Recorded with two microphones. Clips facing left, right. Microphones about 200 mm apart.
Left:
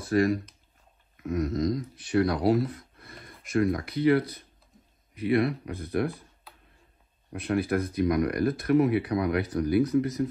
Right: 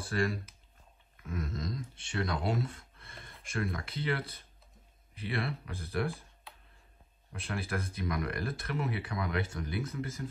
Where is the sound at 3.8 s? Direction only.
30° right (ahead or behind).